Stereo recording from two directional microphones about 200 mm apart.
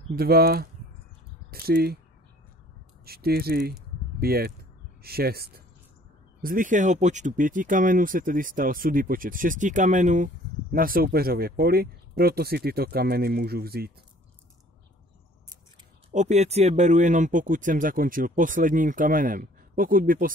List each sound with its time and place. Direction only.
0.1 s speech: 50° right (ahead or behind)
3.1 s speech: 50° right (ahead or behind)
16.1 s speech: 35° right (ahead or behind)